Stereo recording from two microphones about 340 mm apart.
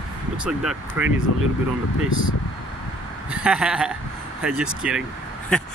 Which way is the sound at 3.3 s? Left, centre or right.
Centre.